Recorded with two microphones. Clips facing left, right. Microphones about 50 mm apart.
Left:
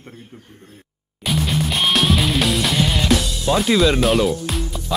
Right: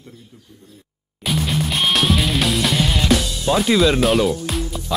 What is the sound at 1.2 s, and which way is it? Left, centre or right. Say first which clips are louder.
Music: even; centre.